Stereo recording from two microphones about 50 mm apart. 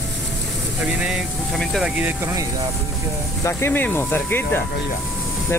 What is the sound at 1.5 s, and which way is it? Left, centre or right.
Speech, centre.